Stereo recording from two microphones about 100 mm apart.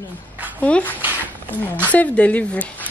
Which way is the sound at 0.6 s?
15° left (ahead or behind).